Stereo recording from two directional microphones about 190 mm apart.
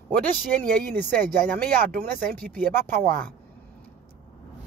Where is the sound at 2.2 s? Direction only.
5° left (ahead or behind).